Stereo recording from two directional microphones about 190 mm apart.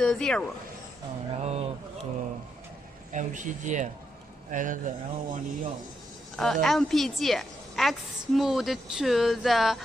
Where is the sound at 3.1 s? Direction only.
40° right (ahead or behind).